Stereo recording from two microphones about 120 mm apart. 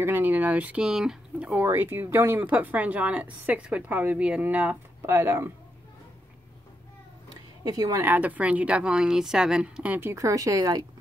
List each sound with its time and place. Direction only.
0.0 s speech: 15° right (ahead or behind)
7.6 s a woman's voice: 30° right (ahead or behind)
8.0 s speech: 15° right (ahead or behind)